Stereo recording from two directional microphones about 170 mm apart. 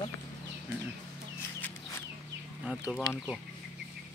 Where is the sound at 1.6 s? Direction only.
15° left (ahead or behind).